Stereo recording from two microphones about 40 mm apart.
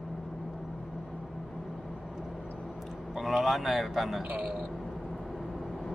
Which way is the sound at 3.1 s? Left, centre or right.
Centre.